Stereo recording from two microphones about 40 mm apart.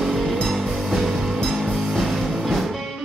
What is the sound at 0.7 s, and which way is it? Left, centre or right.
Music, centre.